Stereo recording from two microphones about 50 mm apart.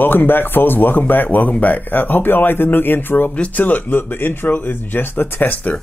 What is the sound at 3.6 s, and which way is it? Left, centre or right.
Speech, left.